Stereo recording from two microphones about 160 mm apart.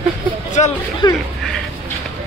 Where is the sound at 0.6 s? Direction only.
45° left (ahead or behind).